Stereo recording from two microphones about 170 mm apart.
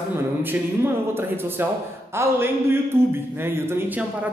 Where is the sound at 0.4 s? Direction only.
15° right (ahead or behind).